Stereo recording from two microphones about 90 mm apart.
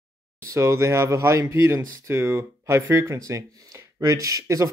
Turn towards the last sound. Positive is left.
turn(degrees=-35)  # may be behind; listen again after turning